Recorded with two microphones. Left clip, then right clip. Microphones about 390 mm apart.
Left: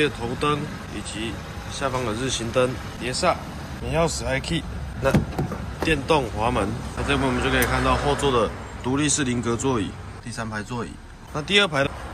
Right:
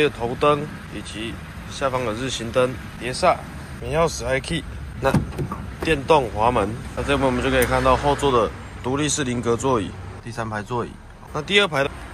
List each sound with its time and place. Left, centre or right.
0.0 s speech: centre